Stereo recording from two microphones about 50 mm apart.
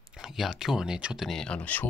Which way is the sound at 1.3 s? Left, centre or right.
Centre.